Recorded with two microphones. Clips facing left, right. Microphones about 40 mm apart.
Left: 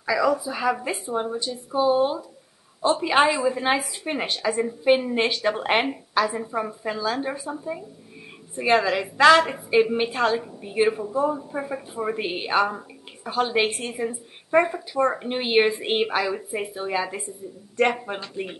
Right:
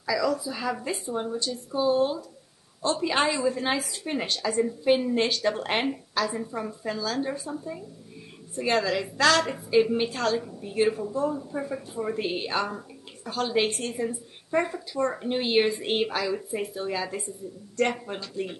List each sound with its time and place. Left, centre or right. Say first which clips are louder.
0.0 s a woman's voice: left 4 dB; left